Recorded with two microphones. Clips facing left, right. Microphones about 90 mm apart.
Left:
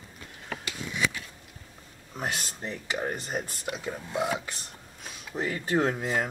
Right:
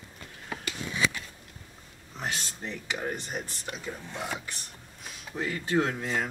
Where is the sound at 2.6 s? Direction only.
40° left (ahead or behind).